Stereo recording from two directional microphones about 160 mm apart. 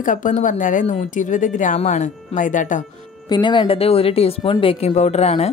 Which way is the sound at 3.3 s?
30° left (ahead or behind).